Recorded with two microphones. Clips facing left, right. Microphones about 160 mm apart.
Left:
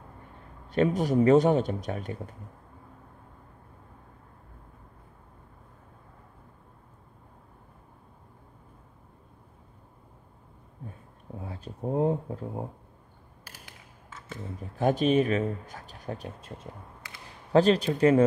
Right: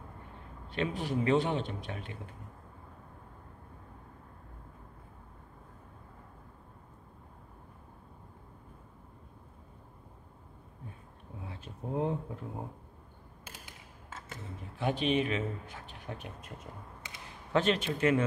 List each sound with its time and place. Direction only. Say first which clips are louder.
0.7 s speech: left 9 dB; 40° left (ahead or behind)
11.3 s speech: left 6 dB; 40° left (ahead or behind)
13.5 s a sound: right 1 dB; 20° right (ahead or behind)
14.8 s speech: left 7 dB; 40° left (ahead or behind)